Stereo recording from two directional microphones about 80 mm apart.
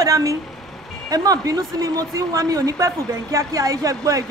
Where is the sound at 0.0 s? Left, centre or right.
Right.